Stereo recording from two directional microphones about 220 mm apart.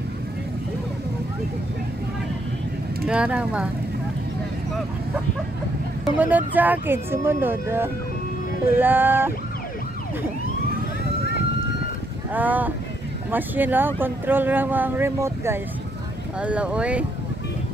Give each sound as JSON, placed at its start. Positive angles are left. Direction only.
{"t": 3.1, "sound": "speech", "side_deg": -5}
{"t": 6.1, "sound": "speech", "side_deg": -5}
{"t": 12.3, "sound": "speech", "side_deg": -5}